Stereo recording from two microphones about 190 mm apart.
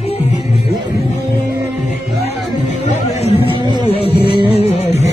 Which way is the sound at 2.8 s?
30° left (ahead or behind).